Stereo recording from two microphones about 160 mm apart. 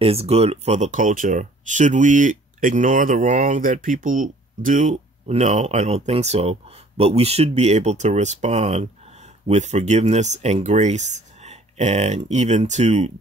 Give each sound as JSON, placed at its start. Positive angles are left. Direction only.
{"t": 0.0, "sound": "speech", "side_deg": -40}